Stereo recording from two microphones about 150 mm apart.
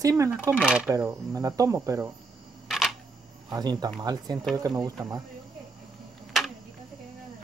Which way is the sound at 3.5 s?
25° right (ahead or behind).